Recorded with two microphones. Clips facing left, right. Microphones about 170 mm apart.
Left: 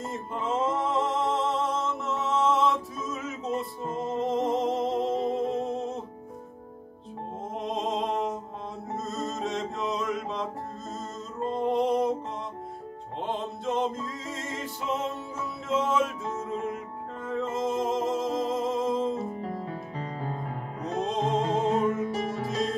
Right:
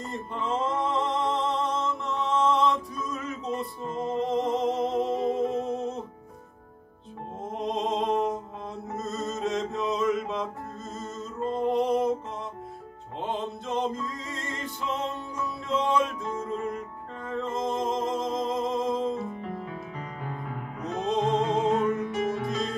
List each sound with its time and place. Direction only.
0.0 s music: 5° left (ahead or behind)
7.5 s a sound: centre (ahead or behind)
8.9 s music: centre (ahead or behind)
11.5 s a sound: centre (ahead or behind)
13.2 s music: centre (ahead or behind)
19.2 s music: 35° left (ahead or behind)
21.0 s music: centre (ahead or behind)
21.4 s music: 35° left (ahead or behind)